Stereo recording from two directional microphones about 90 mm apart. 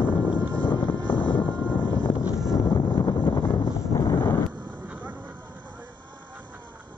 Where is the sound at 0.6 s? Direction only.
60° left (ahead or behind); by 4.4 s 40° left (ahead or behind).